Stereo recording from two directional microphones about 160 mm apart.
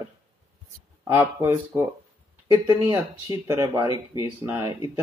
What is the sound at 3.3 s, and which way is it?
Speech, 20° right (ahead or behind).